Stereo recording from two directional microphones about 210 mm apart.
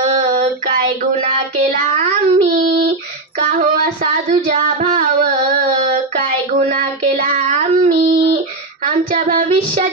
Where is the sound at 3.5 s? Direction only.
40° right (ahead or behind).